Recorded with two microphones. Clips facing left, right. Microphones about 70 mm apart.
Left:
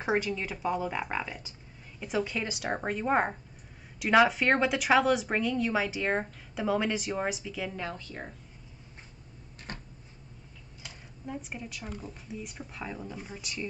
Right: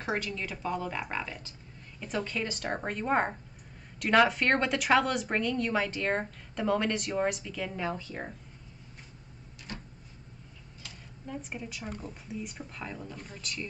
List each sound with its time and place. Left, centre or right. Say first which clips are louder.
0.0 s a woman's voice: left 4 dB; centre
9.7 s a sound: even; left
11.5 s a woman's voice: right 1 dB; centre